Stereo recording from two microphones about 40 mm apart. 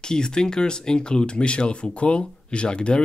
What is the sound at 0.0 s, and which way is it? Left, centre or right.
Speech, centre.